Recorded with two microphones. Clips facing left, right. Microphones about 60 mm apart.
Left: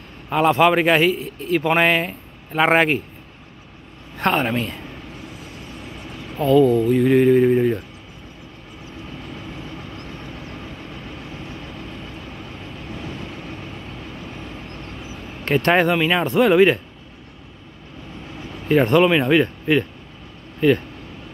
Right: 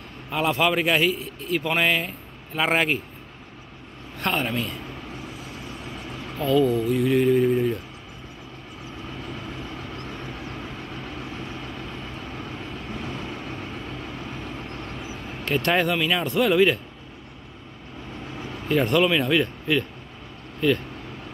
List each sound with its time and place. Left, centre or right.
0.3 s a man's voice: left
4.2 s speech: left
6.4 s a man's voice: left
15.4 s speech: left
18.7 s speech: left